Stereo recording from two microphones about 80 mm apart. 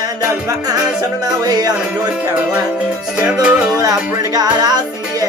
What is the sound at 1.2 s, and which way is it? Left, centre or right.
Speech, right.